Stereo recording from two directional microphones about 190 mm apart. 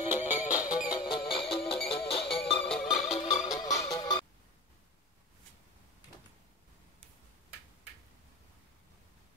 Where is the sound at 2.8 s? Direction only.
35° left (ahead or behind).